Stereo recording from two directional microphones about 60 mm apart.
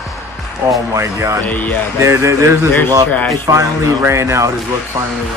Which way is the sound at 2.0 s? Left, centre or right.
Right.